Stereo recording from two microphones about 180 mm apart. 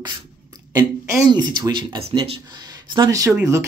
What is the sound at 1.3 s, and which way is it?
Speech, 25° right (ahead or behind).